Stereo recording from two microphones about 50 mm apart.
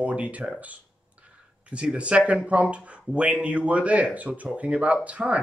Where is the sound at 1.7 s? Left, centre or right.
Right.